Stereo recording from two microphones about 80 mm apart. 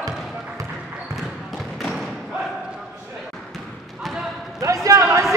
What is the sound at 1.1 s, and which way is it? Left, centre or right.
Thump, centre.